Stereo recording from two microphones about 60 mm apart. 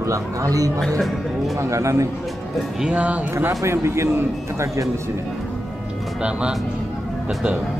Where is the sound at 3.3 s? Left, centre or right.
Right.